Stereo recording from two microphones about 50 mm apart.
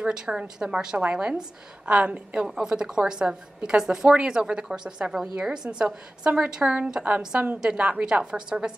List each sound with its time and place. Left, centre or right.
0.0 s a woman's voice: centre